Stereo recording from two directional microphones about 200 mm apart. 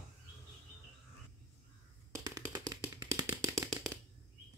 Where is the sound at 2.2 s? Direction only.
20° right (ahead or behind).